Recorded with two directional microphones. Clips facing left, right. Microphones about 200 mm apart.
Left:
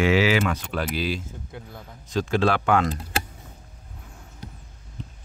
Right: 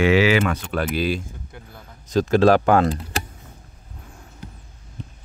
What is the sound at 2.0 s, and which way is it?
Speech, 40° right (ahead or behind).